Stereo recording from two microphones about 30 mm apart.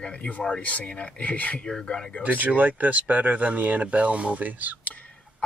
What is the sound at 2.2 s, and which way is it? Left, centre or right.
Speech, right.